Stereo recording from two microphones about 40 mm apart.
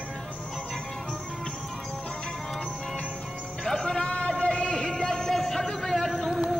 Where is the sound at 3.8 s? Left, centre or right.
Left; by 6.1 s centre.